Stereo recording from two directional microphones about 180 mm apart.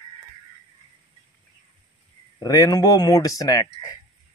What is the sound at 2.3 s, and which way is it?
Speech, 20° left (ahead or behind).